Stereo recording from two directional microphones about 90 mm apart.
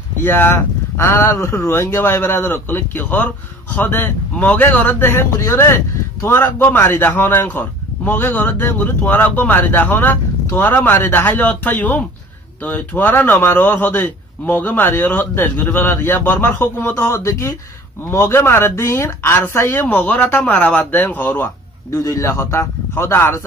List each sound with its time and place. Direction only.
0.2 s a man's voice: 25° left (ahead or behind)
21.9 s a man's voice: 35° left (ahead or behind)